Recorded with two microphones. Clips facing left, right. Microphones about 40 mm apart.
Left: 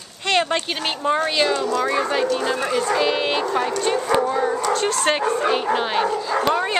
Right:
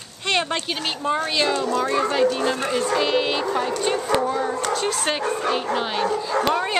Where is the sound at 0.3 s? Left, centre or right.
Centre.